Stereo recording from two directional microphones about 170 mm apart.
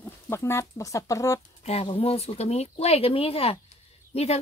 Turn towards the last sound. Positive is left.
turn(degrees=35)  # may be behind; listen again after turning